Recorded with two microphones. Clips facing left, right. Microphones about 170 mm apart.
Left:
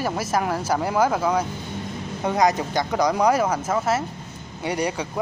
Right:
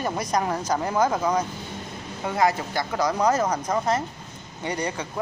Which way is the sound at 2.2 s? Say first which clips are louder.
Left 3 dB; 20° left (ahead or behind).